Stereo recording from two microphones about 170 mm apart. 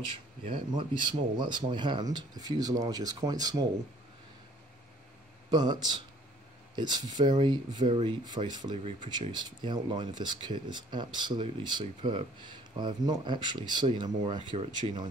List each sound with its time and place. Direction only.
0.7 s speech: 25° right (ahead or behind)
5.5 s speech: 25° right (ahead or behind)